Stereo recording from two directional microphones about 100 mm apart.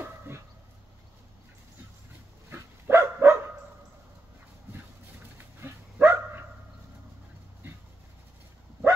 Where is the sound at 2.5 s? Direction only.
25° right (ahead or behind).